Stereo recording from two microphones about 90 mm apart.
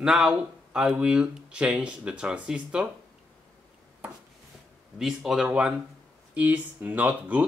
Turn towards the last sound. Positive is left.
turn(degrees=-15)  # may be behind; listen again after turning